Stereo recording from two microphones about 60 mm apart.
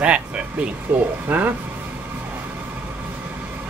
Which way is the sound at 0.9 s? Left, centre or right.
Right.